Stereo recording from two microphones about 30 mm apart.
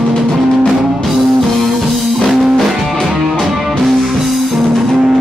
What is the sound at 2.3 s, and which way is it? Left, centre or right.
Music, centre.